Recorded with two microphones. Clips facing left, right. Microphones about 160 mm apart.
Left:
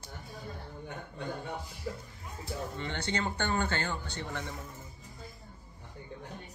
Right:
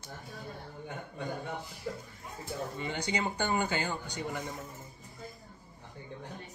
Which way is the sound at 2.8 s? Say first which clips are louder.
Right 1 dB; 10° right (ahead or behind).